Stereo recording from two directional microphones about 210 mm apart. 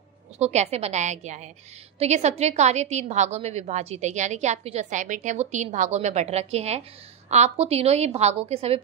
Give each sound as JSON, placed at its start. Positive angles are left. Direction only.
{"t": 0.4, "sound": "a woman's voice", "side_deg": -30}